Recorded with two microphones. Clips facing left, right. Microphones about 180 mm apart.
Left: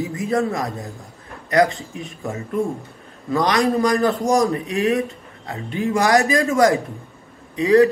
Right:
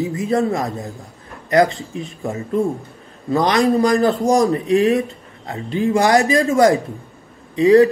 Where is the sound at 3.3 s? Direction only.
30° right (ahead or behind).